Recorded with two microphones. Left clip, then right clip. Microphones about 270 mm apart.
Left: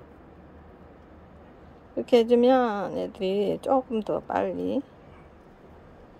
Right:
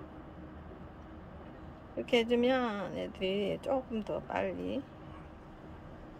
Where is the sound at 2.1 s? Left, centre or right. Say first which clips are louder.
Left 9 dB; left.